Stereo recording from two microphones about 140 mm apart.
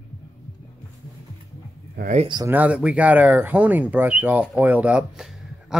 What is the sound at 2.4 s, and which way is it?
Speech, 10° right (ahead or behind).